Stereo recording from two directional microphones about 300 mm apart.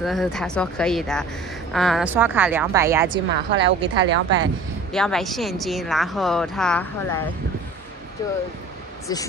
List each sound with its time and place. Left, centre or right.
0.0 s a woman's voice: centre
3.1 s a woman's voice: right
4.9 s a woman's voice: centre